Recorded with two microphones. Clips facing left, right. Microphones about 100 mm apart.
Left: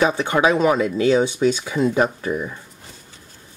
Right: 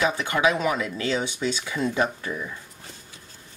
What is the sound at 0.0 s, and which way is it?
Speech, 30° left (ahead or behind).